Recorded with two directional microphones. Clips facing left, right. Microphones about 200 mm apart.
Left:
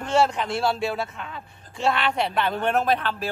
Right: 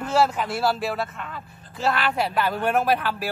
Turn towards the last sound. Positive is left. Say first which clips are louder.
# right 1 dB
turn(degrees=-10)  # may be behind; listen again after turning